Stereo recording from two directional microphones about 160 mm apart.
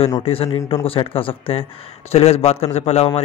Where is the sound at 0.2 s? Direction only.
35° left (ahead or behind).